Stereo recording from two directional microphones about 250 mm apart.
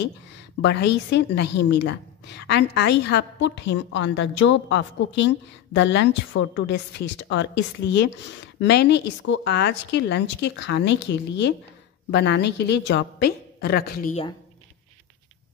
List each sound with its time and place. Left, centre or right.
0.0 s a woman's voice: left